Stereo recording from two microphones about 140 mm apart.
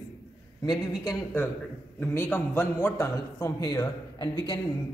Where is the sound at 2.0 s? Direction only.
15° left (ahead or behind).